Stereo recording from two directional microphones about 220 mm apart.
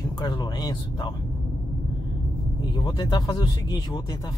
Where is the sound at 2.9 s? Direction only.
20° left (ahead or behind).